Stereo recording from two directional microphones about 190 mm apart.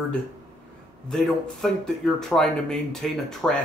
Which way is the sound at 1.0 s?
Centre (ahead or behind).